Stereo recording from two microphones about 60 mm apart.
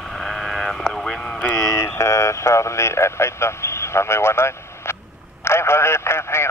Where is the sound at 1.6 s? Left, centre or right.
Left.